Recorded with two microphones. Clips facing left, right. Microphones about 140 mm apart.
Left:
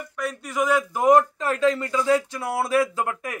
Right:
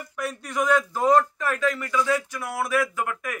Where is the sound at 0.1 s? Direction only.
5° right (ahead or behind).